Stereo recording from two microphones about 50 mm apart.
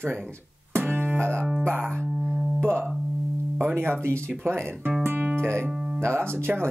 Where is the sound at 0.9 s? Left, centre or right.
Right.